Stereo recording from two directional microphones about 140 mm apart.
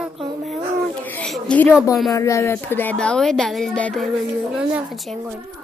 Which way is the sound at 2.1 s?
20° left (ahead or behind).